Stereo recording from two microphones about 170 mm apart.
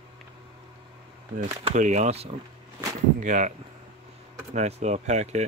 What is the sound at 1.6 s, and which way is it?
Speech, 40° right (ahead or behind).